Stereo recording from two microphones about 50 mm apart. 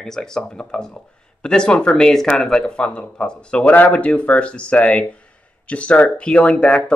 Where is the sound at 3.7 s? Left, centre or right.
Left.